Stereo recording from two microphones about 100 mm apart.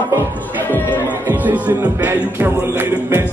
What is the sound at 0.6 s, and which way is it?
Speech, 20° left (ahead or behind).